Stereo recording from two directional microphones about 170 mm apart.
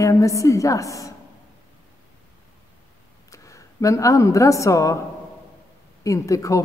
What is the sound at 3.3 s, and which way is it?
A woman's voice, 20° left (ahead or behind).